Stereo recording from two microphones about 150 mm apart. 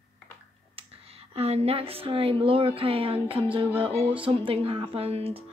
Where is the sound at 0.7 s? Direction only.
40° right (ahead or behind).